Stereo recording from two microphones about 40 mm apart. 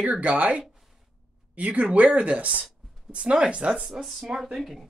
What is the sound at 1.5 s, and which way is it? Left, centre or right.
Speech, right.